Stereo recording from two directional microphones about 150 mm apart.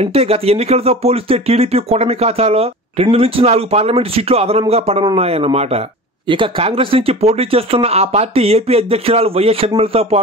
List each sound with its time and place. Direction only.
0.0 s speech: 40° right (ahead or behind)